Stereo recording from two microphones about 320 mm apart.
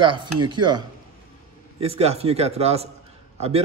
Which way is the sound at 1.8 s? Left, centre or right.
Centre.